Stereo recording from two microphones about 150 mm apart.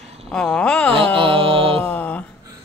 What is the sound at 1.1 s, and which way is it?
Music, 35° right (ahead or behind).